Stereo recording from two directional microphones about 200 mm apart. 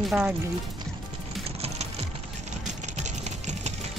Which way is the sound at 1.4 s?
30° right (ahead or behind).